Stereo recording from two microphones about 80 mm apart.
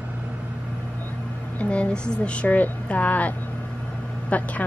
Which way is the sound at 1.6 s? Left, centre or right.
Centre.